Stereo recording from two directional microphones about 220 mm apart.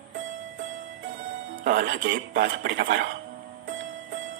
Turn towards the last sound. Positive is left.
turn(degrees=-40)  # may be behind; listen again after turning